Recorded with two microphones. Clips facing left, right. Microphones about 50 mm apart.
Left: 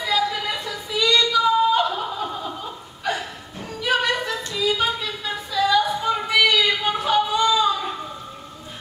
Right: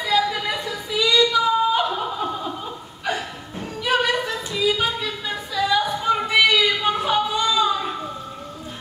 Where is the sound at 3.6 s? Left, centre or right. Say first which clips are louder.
Right 1 dB; centre.